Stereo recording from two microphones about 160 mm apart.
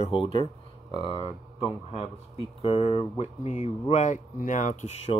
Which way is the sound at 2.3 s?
40° left (ahead or behind).